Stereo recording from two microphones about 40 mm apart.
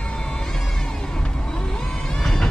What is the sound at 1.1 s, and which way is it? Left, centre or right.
Vehicle, left.